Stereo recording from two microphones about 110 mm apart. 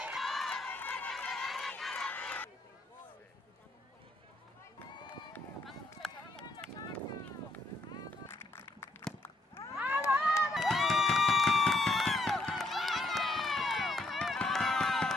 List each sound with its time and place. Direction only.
0.0 s run: centre (ahead or behind)
0.7 s run: 15° left (ahead or behind)
1.1 s run: centre (ahead or behind)
2.0 s crowd: 15° left (ahead or behind)
5.7 s run: 5° left (ahead or behind)
8.3 s music: 20° left (ahead or behind)
9.8 s a sound: 10° right (ahead or behind)
10.5 s crowd: centre (ahead or behind)